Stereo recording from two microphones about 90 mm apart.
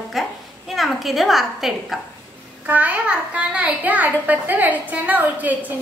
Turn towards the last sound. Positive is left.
turn(degrees=-15)  # may be behind; listen again after turning